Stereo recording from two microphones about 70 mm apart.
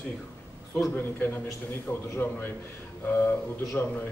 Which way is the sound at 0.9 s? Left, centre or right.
Left.